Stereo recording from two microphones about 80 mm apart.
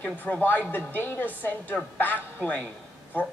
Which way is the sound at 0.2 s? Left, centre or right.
Left.